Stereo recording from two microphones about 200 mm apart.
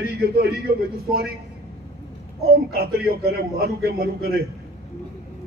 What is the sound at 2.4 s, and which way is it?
A man's voice, 50° right (ahead or behind).